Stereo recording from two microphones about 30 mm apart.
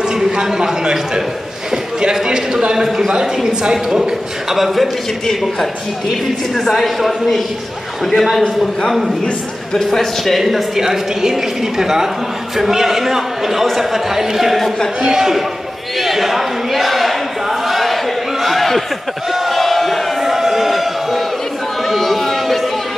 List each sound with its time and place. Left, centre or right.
0.0 s a man's voice: right
1.7 s a sound: right
2.2 s a man's voice: right
4.6 s a woman's voice: centre
6.5 s a man's voice: centre
9.2 s a man's voice: left
9.8 s a man's voice: centre
10.4 s a woman's voice: centre
16.0 s a sound: centre
19.3 s crowd: centre
21.8 s a sound: centre